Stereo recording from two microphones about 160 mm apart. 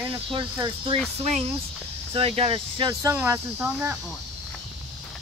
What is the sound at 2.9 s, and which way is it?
Speech, 20° right (ahead or behind).